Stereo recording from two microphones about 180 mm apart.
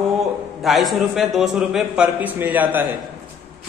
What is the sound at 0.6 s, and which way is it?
A man's voice, centre (ahead or behind).